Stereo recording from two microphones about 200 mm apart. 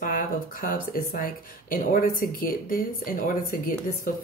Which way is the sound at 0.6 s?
45° left (ahead or behind).